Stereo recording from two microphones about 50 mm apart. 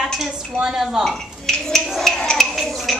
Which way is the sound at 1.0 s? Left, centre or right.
Centre.